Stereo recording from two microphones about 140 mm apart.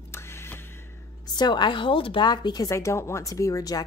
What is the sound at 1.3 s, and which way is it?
Speech, 30° left (ahead or behind).